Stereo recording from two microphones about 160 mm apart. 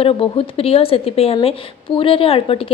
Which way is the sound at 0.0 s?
35° left (ahead or behind).